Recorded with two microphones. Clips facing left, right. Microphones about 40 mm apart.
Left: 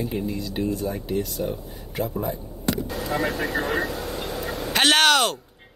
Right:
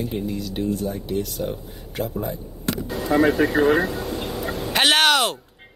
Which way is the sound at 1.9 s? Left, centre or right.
Centre.